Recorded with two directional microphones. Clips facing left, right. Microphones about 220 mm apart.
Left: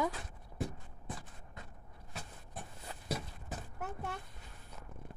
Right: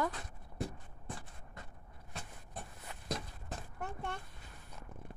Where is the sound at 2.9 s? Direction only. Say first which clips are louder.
Left 3 dB; 30° left (ahead or behind).